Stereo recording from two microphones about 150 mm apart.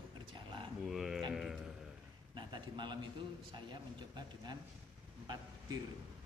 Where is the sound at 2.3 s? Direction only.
30° right (ahead or behind).